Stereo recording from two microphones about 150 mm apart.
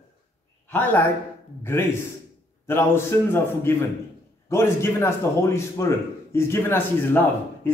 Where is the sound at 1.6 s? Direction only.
15° left (ahead or behind).